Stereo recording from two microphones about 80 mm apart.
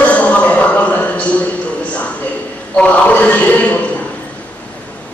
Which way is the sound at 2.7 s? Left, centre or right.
Centre.